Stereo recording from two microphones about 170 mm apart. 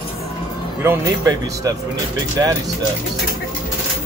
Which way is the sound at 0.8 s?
20° right (ahead or behind).